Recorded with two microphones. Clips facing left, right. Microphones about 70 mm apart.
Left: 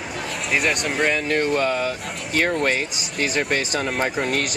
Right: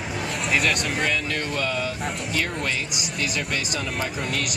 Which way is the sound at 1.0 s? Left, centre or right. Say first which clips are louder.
Left 5 dB; left.